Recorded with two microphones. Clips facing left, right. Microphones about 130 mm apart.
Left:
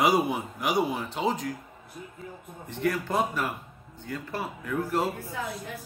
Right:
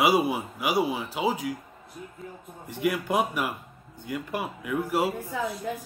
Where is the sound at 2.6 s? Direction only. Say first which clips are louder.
Right 1 dB; 10° right (ahead or behind).